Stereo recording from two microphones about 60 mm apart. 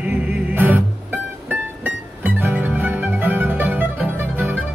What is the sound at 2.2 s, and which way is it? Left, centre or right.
Music, right.